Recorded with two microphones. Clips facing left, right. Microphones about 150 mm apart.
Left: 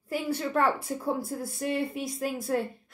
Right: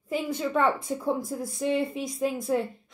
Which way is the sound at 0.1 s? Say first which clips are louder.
Right 1 dB; 5° left (ahead or behind).